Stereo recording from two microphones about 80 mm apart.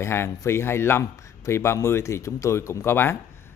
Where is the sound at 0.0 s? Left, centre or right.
Left.